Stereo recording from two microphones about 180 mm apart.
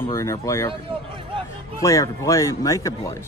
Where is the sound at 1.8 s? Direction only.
15° left (ahead or behind).